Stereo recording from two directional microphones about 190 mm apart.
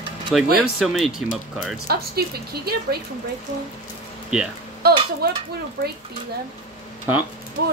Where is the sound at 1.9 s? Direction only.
55° right (ahead or behind).